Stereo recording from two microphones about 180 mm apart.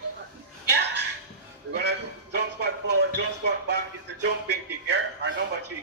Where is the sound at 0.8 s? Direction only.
70° right (ahead or behind).